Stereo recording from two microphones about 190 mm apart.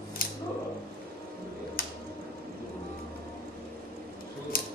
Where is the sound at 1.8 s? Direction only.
50° left (ahead or behind).